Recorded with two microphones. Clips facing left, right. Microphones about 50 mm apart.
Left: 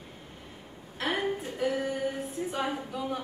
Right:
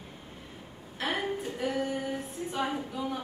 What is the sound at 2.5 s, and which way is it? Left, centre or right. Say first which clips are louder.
Speech: right 2 dB; centre.